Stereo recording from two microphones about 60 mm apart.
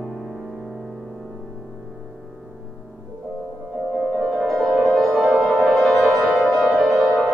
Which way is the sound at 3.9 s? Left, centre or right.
Centre.